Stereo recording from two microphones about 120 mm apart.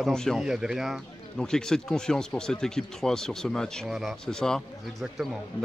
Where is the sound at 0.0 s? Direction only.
5° left (ahead or behind).